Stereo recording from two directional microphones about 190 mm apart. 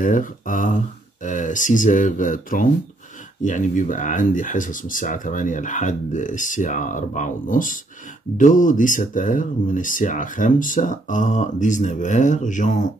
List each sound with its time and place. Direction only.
0.0 s speech: 45° left (ahead or behind)